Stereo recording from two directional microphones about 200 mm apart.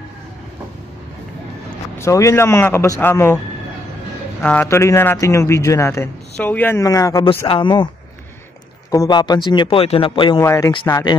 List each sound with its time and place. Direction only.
2.0 s a man's voice: 15° left (ahead or behind)
4.4 s a man's voice: 5° left (ahead or behind); by 7.9 s 25° left (ahead or behind)
8.9 s a man's voice: 20° left (ahead or behind)